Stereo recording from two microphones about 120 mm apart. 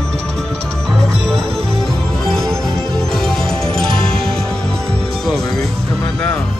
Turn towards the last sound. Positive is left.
turn(degrees=5)  # may be behind; listen again after turning